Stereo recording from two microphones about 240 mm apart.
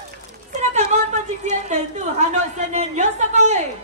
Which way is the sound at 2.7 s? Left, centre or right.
Right.